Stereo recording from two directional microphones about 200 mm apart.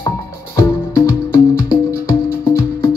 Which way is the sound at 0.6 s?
15° left (ahead or behind).